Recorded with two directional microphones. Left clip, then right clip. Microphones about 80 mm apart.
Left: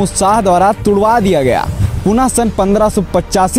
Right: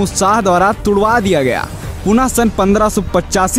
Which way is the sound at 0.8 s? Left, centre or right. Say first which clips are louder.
Left 1 dB; centre.